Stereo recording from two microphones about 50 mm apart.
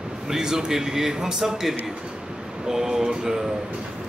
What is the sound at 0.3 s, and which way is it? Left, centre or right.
A man's voice, centre.